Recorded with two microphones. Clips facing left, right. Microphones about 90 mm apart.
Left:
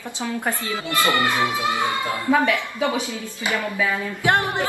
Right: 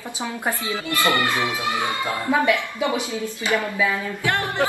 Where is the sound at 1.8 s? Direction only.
20° right (ahead or behind).